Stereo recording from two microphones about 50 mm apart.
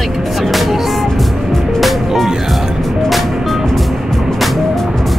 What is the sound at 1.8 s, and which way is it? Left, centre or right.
Music, centre.